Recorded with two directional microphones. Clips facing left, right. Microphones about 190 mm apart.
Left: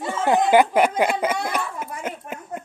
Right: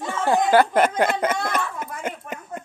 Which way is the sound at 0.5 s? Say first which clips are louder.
Even; 10° left (ahead or behind).